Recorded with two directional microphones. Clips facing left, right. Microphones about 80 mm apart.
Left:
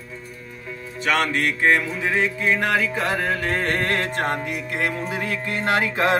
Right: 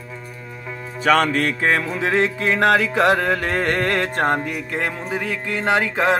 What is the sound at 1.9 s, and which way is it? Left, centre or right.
Music, right.